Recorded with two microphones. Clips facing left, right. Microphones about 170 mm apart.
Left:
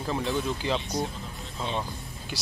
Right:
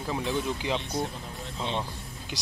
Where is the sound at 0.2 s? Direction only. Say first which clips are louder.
Left 1 dB; 15° right (ahead or behind).